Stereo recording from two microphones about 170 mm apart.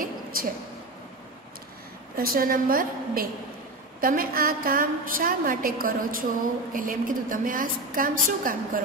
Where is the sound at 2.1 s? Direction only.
55° right (ahead or behind).